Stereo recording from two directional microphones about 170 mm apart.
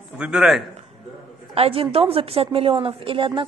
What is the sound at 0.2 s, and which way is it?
Speech, 5° right (ahead or behind).